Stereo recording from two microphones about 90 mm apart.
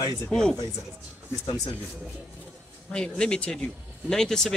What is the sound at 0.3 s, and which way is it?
Speech, 5° left (ahead or behind).